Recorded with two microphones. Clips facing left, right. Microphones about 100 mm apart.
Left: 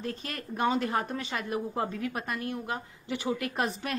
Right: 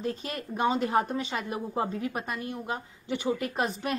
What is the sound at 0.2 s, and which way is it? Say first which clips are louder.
A woman's voice: left 2 dB; centre (ahead or behind).